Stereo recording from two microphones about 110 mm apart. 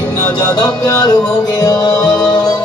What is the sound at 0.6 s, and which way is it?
Music, 40° left (ahead or behind).